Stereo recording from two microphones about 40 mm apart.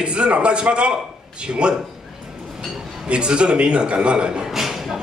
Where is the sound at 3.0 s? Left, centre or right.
Right.